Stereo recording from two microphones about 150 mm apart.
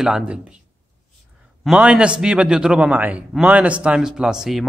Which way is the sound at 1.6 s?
5° right (ahead or behind).